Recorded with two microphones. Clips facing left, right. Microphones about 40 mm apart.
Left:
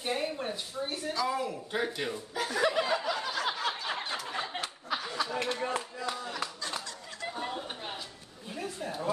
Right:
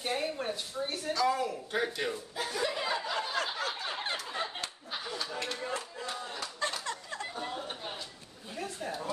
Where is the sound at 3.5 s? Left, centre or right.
Left.